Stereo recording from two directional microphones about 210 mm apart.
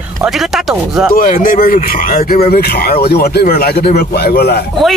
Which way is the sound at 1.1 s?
40° left (ahead or behind).